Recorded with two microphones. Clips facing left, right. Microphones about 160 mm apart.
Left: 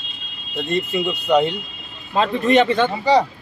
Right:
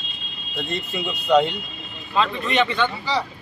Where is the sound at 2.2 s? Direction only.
45° left (ahead or behind).